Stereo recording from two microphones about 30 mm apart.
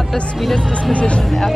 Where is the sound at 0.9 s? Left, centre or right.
Left.